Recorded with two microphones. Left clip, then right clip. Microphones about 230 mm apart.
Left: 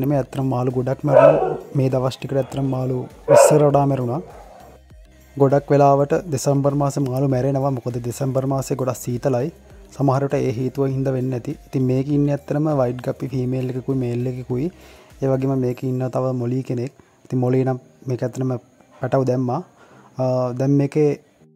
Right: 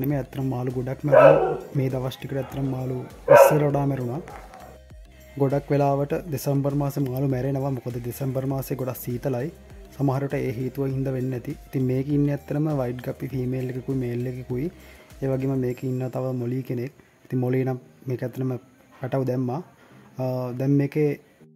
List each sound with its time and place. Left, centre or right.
0.0 s speech: centre
5.4 s speech: centre